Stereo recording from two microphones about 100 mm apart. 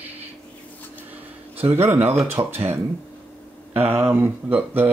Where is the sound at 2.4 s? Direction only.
45° right (ahead or behind).